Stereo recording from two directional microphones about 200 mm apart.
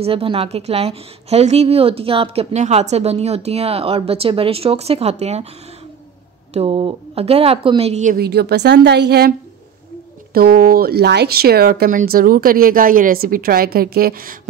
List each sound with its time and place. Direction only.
0.0 s a woman's voice: 25° right (ahead or behind)
6.5 s speech: 30° right (ahead or behind); by 9.3 s 55° right (ahead or behind)
10.3 s speech: 50° right (ahead or behind)